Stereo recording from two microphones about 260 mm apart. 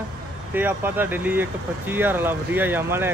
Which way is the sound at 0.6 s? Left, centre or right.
Centre.